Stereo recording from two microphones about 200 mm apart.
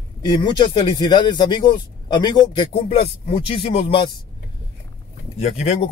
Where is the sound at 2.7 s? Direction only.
35° left (ahead or behind).